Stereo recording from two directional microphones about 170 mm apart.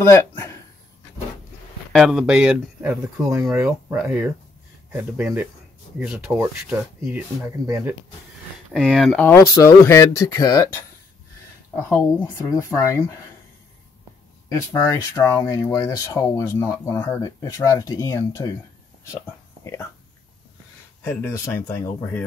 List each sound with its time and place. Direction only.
0.0 s speech: 20° left (ahead or behind)
1.9 s speech: centre (ahead or behind); by 7.9 s 15° right (ahead or behind)
8.8 s speech: 5° right (ahead or behind)
9.3 s speech: 20° left (ahead or behind)
11.7 s speech: 15° left (ahead or behind)
14.5 s speech: 20° left (ahead or behind)
19.6 s speech: 20° left (ahead or behind)
21.0 s speech: 15° left (ahead or behind)